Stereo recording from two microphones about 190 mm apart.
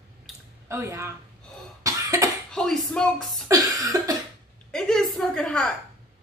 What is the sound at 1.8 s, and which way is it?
Cough, 15° right (ahead or behind).